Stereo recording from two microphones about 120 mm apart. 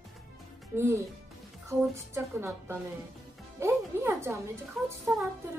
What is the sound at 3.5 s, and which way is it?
Speech, 20° right (ahead or behind).